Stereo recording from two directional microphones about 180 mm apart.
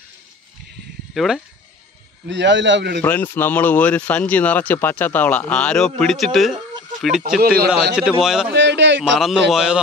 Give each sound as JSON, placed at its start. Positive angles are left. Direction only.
{"t": 1.1, "sound": "speech", "side_deg": 0}
{"t": 2.2, "sound": "a man's voice", "side_deg": -90}
{"t": 3.0, "sound": "speech", "side_deg": 10}
{"t": 7.4, "sound": "speech", "side_deg": -60}
{"t": 7.9, "sound": "speech", "side_deg": -5}
{"t": 8.5, "sound": "a man's voice", "side_deg": -75}
{"t": 9.5, "sound": "speech", "side_deg": -5}